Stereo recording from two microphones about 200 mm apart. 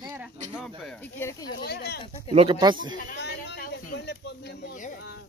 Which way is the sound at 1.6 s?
50° left (ahead or behind).